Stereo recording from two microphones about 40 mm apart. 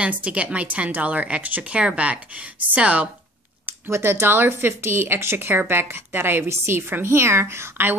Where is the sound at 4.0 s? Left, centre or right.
Right.